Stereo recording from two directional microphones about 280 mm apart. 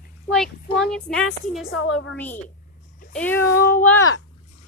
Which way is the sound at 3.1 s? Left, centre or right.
Centre.